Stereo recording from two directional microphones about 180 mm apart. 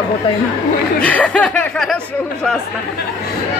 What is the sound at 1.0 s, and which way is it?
Speech, 5° left (ahead or behind).